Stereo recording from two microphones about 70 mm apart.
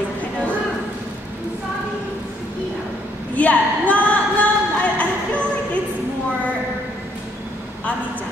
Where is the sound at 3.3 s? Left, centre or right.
Left.